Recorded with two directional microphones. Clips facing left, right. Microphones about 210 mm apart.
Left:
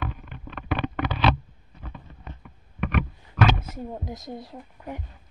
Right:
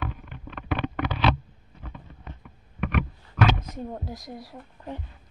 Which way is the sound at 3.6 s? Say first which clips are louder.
Even; 10° left (ahead or behind).